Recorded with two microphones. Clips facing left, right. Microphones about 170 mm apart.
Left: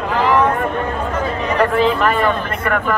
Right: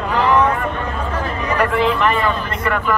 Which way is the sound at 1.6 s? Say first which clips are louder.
Left 2 dB; 45° left (ahead or behind).